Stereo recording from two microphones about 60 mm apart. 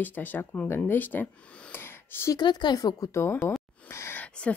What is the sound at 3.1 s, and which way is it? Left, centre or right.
Speech, left.